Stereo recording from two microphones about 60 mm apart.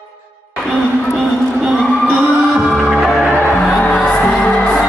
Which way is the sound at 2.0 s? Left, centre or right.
Centre.